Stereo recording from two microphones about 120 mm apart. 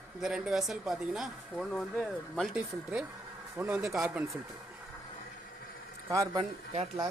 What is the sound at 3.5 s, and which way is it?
Speech, 10° right (ahead or behind).